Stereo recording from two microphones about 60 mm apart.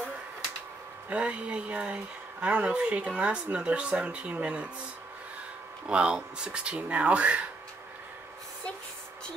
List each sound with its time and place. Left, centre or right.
1.1 s speech: centre
5.9 s speech: centre